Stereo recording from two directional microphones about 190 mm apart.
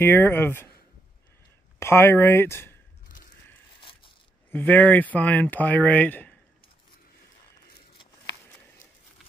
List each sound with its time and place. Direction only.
0.0 s speech: 10° left (ahead or behind)
1.8 s speech: 15° left (ahead or behind)
4.5 s speech: 10° left (ahead or behind)